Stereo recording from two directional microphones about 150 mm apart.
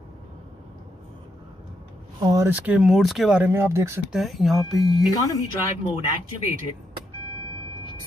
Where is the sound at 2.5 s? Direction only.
10° right (ahead or behind).